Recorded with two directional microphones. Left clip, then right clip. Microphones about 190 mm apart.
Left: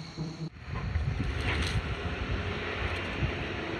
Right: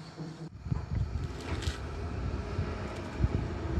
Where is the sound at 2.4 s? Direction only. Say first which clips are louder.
Left 7 dB; 60° right (ahead or behind).